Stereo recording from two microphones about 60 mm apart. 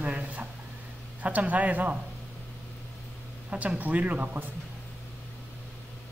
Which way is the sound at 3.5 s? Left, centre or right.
Right.